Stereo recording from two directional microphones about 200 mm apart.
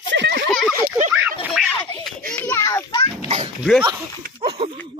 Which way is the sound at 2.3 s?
10° left (ahead or behind).